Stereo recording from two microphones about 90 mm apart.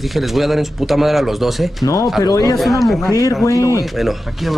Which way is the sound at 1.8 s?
40° left (ahead or behind).